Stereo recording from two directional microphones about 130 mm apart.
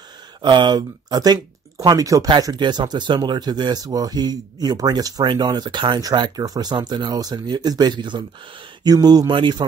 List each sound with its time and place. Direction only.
0.4 s speech: 35° right (ahead or behind)